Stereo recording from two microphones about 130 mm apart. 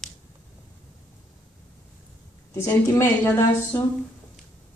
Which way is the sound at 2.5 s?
20° left (ahead or behind).